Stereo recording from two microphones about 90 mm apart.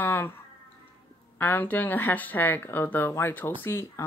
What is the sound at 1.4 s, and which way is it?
Speech, 20° left (ahead or behind).